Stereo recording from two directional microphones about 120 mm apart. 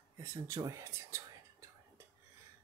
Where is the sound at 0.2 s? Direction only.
25° right (ahead or behind).